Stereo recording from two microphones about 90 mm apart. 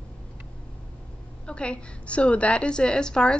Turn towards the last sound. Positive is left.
turn(degrees=10)  # may be behind; listen again after turning